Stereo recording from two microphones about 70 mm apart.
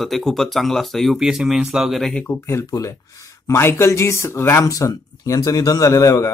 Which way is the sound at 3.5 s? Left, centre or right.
Left.